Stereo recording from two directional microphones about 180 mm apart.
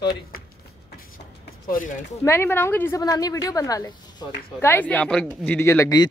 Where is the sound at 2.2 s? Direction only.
15° left (ahead or behind).